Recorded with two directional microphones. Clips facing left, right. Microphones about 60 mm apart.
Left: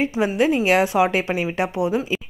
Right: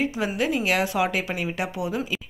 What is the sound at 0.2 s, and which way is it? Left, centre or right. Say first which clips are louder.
A woman's voice: left 6 dB; left.